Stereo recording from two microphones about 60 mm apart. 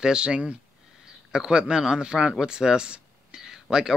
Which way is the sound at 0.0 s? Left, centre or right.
Centre.